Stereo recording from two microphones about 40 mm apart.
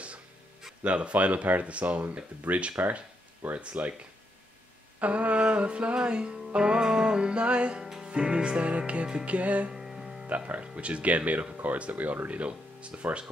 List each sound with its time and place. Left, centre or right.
0.8 s speech: right
5.0 s music: right
7.8 s music: centre; by 9.7 s right
9.7 s music: centre
10.2 s speech: right
10.6 s speech: right